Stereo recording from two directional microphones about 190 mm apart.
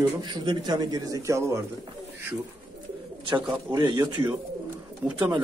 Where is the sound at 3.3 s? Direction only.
25° right (ahead or behind).